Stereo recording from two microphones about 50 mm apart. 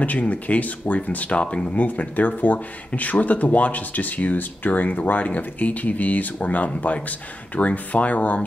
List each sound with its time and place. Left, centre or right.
0.0 s speech: left